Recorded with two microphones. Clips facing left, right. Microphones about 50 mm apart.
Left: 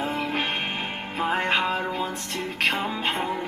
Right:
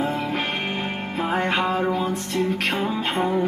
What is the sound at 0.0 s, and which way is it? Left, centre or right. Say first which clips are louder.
Music: right 2 dB; left.